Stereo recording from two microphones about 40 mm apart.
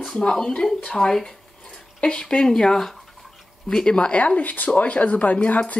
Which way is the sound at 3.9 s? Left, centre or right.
Left.